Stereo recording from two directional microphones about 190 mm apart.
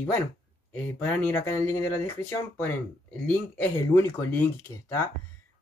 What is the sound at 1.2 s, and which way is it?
Speech, 15° left (ahead or behind).